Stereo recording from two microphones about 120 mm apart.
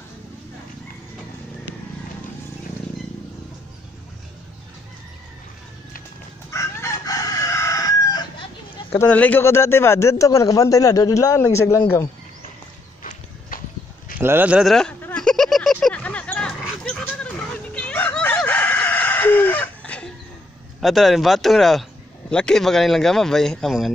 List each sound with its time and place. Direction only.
6.5 s chicken: 25° left (ahead or behind)
8.9 s speech: 15° left (ahead or behind)
14.1 s speech: 15° right (ahead or behind)
14.7 s a man's voice: 5° left (ahead or behind)
15.0 s a sound: 15° left (ahead or behind)
15.2 s a sound: 5° left (ahead or behind)
17.7 s chicken: 10° left (ahead or behind)
20.8 s a man's voice: centre (ahead or behind)